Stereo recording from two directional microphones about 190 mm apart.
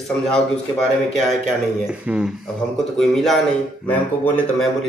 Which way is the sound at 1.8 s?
5° right (ahead or behind).